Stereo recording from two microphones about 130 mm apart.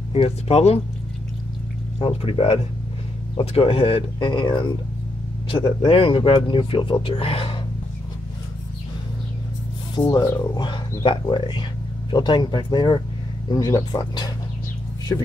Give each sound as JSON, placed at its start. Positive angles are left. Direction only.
{"t": 0.1, "sound": "speech", "side_deg": 50}
{"t": 2.0, "sound": "speech", "side_deg": 45}
{"t": 9.9, "sound": "speech", "side_deg": 30}